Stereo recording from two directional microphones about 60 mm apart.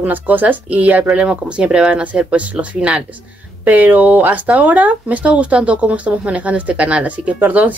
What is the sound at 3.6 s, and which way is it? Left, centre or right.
Speech, right.